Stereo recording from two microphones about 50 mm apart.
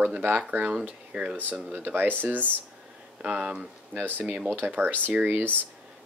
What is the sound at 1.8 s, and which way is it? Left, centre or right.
Speech, right.